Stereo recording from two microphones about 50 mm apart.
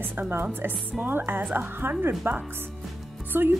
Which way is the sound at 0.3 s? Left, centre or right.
Right.